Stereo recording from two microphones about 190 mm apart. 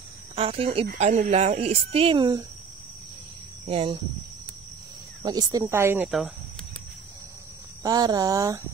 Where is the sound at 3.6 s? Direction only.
30° right (ahead or behind).